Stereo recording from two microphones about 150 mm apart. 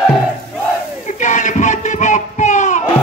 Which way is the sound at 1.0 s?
55° left (ahead or behind).